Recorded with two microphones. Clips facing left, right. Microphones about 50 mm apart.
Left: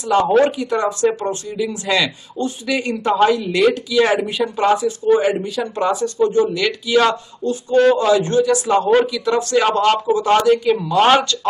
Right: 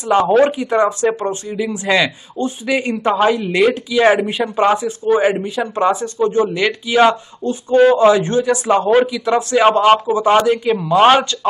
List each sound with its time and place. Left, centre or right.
0.4 s a man's voice: right